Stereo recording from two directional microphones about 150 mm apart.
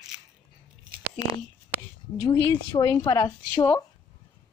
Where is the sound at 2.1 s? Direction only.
20° left (ahead or behind).